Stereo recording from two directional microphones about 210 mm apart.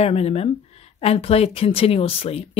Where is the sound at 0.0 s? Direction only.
30° left (ahead or behind).